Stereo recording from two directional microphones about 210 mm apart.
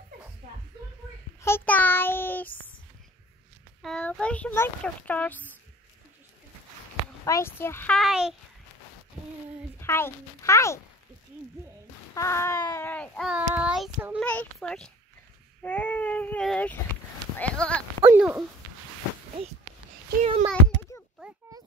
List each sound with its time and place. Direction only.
1.4 s child singing: 10° left (ahead or behind)
3.8 s a child's voice: 5° left (ahead or behind)
7.2 s speech: 15° left (ahead or behind)
9.8 s speech: 10° left (ahead or behind)
12.1 s speech: 15° left (ahead or behind)
13.3 s child singing: 5° right (ahead or behind)
14.2 s child singing: 5° left (ahead or behind)
15.6 s speech: 10° left (ahead or behind)
18.0 s speech: 10° right (ahead or behind)
20.2 s a child's voice: 35° right (ahead or behind)
21.2 s a sound: 5° right (ahead or behind)